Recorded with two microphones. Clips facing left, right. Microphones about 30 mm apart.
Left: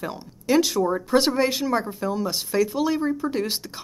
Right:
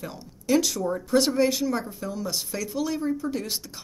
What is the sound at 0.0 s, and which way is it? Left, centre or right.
Speech, left.